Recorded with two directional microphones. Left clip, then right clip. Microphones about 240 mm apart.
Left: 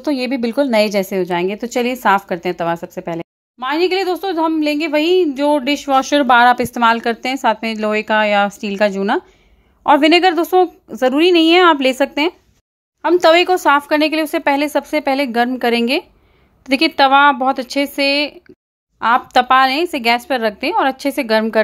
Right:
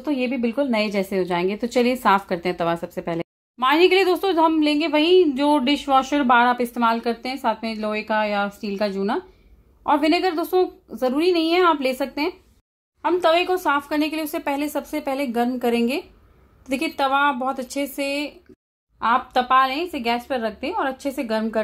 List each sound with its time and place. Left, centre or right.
0.0 s a woman's voice: left; by 3.3 s centre
3.5 s speech: centre; by 21.5 s left